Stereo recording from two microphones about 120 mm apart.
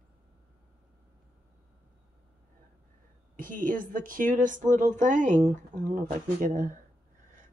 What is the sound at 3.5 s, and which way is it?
Speech, 90° right.